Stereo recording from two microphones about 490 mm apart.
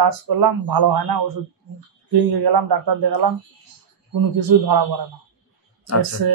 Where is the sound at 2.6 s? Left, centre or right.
Right.